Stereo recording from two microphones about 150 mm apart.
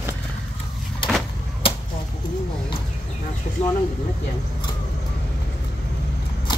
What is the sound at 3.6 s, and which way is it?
Speech, 40° left (ahead or behind).